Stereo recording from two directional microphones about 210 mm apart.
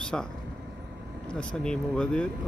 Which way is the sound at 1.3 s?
5° left (ahead or behind).